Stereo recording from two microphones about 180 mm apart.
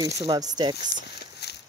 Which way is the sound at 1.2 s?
65° left (ahead or behind).